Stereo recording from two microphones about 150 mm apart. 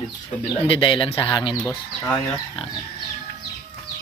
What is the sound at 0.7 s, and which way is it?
Speech, 35° left (ahead or behind).